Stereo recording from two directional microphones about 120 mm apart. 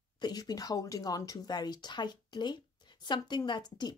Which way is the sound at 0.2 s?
35° left (ahead or behind).